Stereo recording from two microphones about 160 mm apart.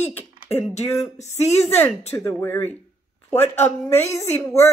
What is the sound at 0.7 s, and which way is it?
Speech, 45° left (ahead or behind).